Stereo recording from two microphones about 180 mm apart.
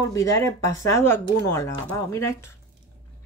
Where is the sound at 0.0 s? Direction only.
20° left (ahead or behind).